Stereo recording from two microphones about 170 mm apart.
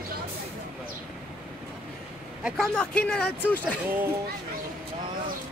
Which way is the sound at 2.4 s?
5° left (ahead or behind).